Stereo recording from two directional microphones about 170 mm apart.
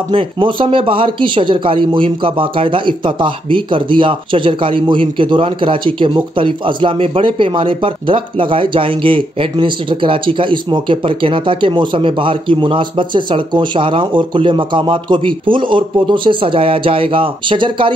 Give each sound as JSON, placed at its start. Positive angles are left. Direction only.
{"t": 0.1, "sound": "speech", "side_deg": -30}